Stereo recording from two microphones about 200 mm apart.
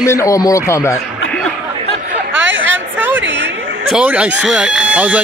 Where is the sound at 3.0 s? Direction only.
10° right (ahead or behind).